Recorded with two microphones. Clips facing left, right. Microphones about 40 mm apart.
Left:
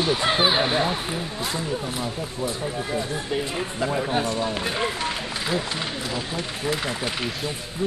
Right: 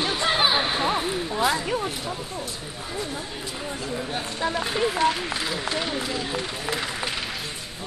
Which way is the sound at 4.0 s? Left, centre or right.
Left.